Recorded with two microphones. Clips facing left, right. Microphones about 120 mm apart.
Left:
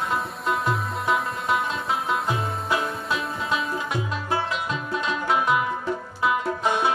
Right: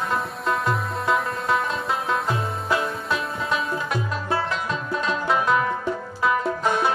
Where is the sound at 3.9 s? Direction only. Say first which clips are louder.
Right 1 dB; 20° left (ahead or behind).